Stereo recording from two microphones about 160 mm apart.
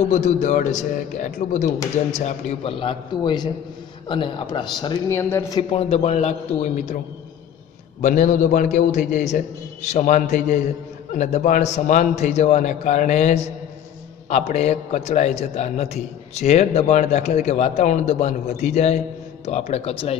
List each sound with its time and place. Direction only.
0.1 s a man's voice: 50° left (ahead or behind)
2.7 s a man's voice: 35° left (ahead or behind); by 5.6 s 20° left (ahead or behind)
5.6 s a man's voice: 35° left (ahead or behind)
8.0 s a man's voice: 55° left (ahead or behind); by 20.2 s 40° left (ahead or behind)